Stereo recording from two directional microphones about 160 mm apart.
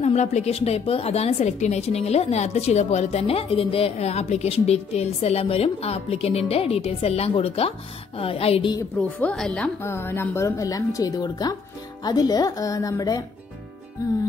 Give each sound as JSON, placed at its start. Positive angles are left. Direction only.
{"t": 0.0, "sound": "a woman's voice", "side_deg": 45}
{"t": 9.2, "sound": "a woman's voice", "side_deg": 5}